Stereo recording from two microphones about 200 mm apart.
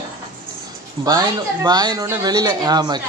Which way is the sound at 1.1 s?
20° right (ahead or behind).